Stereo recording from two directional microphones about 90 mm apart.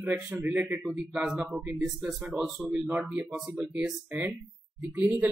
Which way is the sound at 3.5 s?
20° right (ahead or behind).